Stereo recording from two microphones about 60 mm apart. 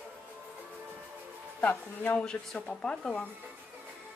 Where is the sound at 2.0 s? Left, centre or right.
Left.